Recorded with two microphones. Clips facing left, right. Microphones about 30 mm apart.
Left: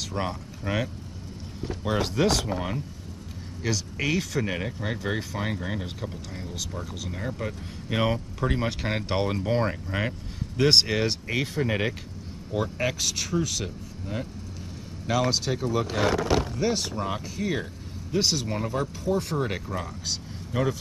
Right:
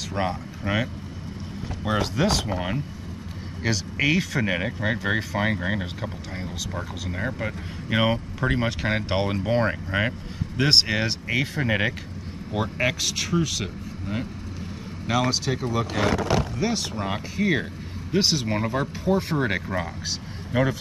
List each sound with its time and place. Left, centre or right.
0.1 s speech: centre
1.6 s speech: centre
2.4 s speech: centre
7.1 s speech: right
13.0 s speech: centre
15.0 s speech: centre
16.9 s speech: right